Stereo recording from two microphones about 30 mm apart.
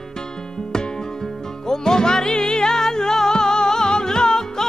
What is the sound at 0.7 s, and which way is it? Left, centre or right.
Music, left.